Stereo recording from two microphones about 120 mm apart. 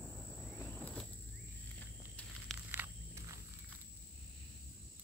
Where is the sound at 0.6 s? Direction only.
15° left (ahead or behind).